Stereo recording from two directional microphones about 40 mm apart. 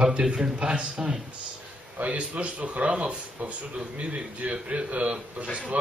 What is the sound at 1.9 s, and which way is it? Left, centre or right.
Speech, right.